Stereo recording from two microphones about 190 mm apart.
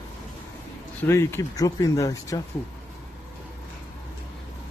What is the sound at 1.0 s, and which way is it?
Speech, 15° left (ahead or behind).